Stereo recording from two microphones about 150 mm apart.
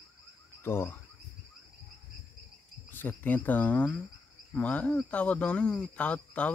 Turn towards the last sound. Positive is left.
turn(degrees=10)  # may be behind; listen again after turning